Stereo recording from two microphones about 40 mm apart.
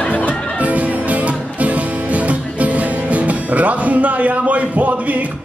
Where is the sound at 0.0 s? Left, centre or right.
Left.